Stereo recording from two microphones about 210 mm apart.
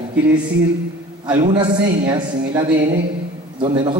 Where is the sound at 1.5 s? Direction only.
20° right (ahead or behind).